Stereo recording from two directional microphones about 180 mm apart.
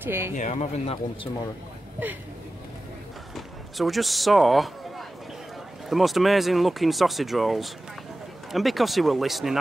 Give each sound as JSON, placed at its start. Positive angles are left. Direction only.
{"t": 0.0, "sound": "speech", "side_deg": -10}
{"t": 0.4, "sound": "speech", "side_deg": 40}
{"t": 3.3, "sound": "speech", "side_deg": 0}